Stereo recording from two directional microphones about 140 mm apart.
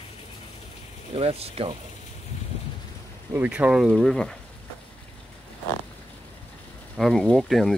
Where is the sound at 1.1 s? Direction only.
45° right (ahead or behind).